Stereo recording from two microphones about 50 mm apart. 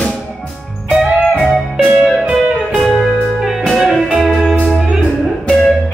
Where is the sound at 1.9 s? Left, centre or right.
Centre.